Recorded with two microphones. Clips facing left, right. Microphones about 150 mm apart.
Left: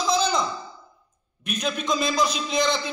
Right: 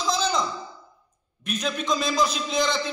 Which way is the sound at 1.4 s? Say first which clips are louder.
Even; centre (ahead or behind).